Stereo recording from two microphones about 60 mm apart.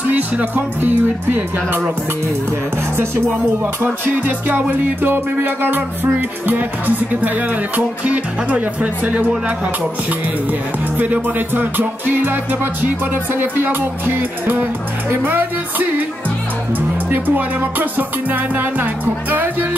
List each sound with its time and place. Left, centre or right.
0.1 s music: right
3.8 s music: right
11.0 s music: right
17.1 s music: right